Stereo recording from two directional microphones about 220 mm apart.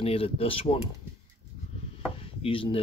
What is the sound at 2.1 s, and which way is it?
Chopping, 25° left (ahead or behind).